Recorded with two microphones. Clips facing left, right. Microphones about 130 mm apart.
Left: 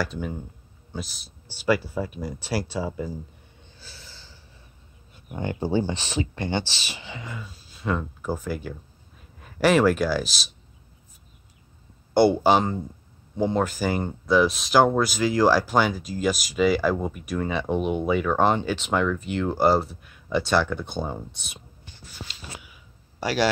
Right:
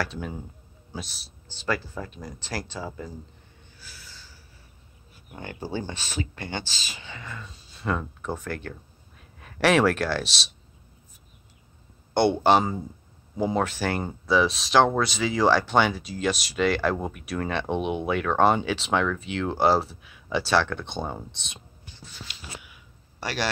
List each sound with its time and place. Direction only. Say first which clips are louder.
0.0 s speech: left 2 dB; centre (ahead or behind)
1.6 s speech: left 6 dB; 10° left (ahead or behind)
3.8 s snort: left 1 dB; 25° left (ahead or behind)
5.1 s speech: left 8 dB; 20° left (ahead or behind)
7.4 s speech: left 1 dB; centre (ahead or behind)
12.1 s speech: left 2 dB; 5° left (ahead or behind)
22.3 s a sound: left 1 dB; centre (ahead or behind)